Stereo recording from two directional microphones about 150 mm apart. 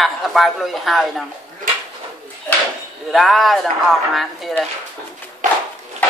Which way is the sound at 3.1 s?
Centre (ahead or behind).